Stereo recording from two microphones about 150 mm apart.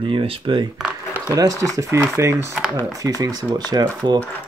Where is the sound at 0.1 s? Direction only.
35° right (ahead or behind).